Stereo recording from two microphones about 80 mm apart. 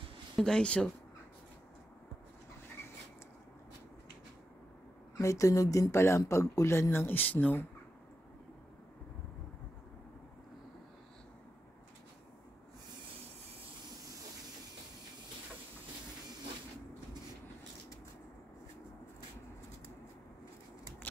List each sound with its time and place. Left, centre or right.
0.4 s speech: centre
5.2 s speech: left